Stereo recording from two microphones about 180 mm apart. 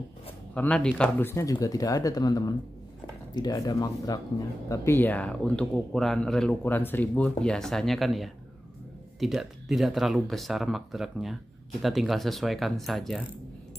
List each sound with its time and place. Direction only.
0.6 s speech: 5° left (ahead or behind)
1.3 s speech: 20° left (ahead or behind); by 13.2 s centre (ahead or behind)